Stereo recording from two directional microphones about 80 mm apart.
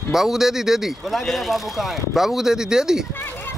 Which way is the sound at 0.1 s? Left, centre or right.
Centre.